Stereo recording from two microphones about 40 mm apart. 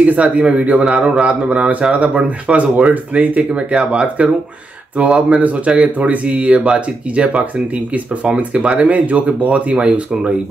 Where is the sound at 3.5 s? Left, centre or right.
Right.